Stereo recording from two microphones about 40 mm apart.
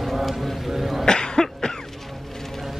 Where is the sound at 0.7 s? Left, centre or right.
Centre.